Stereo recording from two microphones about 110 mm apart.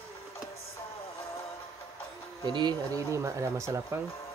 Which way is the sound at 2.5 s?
40° right (ahead or behind).